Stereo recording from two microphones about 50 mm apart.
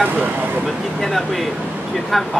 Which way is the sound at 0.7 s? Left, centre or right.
Centre.